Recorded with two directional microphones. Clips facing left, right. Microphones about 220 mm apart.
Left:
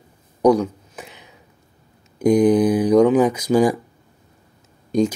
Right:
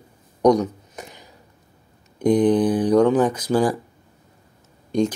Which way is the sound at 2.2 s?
10° left (ahead or behind).